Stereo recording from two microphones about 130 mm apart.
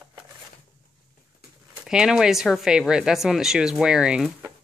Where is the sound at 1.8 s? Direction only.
5° right (ahead or behind).